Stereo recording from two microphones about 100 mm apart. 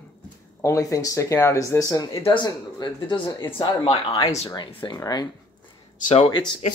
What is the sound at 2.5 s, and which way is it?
Speech, 45° left (ahead or behind).